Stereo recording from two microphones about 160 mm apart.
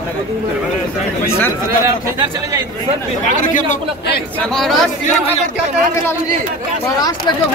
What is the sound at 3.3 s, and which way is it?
Speech, 50° left (ahead or behind).